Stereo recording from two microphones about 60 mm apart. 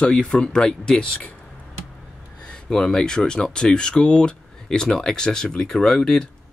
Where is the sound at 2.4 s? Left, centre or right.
Centre.